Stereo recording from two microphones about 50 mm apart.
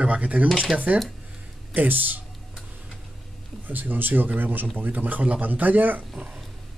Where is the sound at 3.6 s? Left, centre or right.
Right.